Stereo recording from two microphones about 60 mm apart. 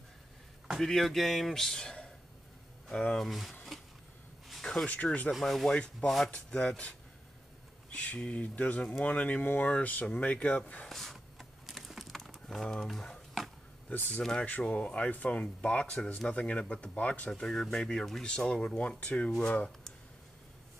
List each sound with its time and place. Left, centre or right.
0.7 s speech: centre
3.3 s speech: centre
4.5 s a sound: centre
5.3 s speech: centre
5.7 s speech: centre
10.9 s typing: centre
13.8 s speech: left
17.3 s speech: centre